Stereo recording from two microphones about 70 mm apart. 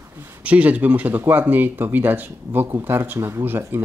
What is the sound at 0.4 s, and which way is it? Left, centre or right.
Speech, centre.